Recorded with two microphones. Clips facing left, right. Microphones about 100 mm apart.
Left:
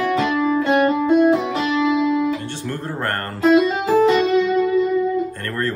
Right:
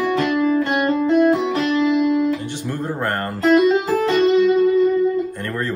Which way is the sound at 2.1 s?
15° right (ahead or behind).